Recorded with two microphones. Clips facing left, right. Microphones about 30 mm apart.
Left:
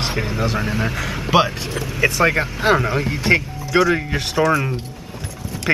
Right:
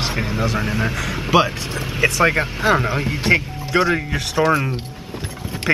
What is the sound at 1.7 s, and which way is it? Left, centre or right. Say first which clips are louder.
Speech: even; right.